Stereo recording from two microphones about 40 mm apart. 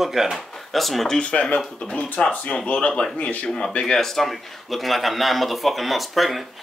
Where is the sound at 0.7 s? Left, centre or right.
Centre.